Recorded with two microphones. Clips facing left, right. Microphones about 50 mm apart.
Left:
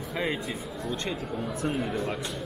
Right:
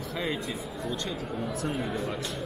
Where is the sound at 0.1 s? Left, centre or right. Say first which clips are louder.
Left 2 dB; centre.